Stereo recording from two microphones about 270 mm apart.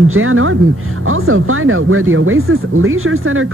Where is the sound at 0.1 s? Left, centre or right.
Right.